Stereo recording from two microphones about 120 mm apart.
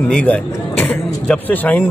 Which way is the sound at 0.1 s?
10° left (ahead or behind).